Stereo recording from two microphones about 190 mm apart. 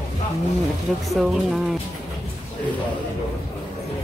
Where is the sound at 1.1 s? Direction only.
5° right (ahead or behind).